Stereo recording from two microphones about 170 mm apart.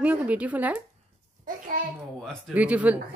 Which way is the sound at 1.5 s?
50° right (ahead or behind).